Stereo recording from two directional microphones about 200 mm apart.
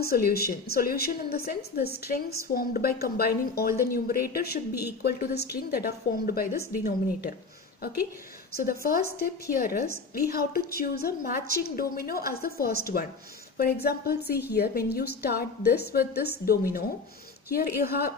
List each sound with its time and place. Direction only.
0.0 s a woman's voice: 50° left (ahead or behind)
8.5 s a woman's voice: 50° left (ahead or behind)